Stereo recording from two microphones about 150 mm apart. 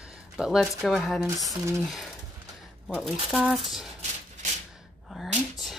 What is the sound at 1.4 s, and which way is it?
Speech, 25° right (ahead or behind).